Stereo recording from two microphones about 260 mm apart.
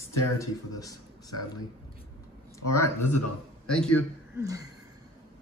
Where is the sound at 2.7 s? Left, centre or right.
Centre.